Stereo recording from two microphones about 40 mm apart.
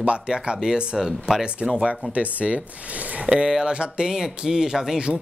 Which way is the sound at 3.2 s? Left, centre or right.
Centre.